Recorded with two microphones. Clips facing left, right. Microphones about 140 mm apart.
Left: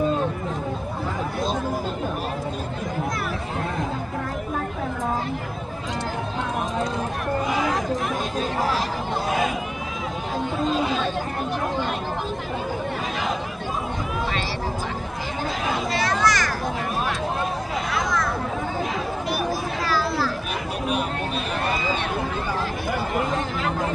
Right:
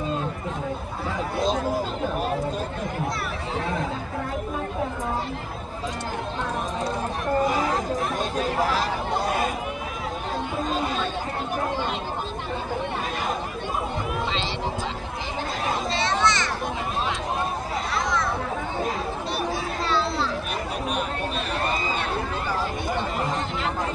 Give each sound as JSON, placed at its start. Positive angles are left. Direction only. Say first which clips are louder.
{"t": 7.4, "sound": "chatter", "louder": "even", "side_deg": -45}
{"t": 10.7, "sound": "chatter", "louder": "left 2 dB", "side_deg": -45}
{"t": 15.9, "sound": "a sound", "louder": "left 1 dB", "side_deg": -25}
{"t": 19.9, "sound": "children playing", "louder": "left 1 dB", "side_deg": -25}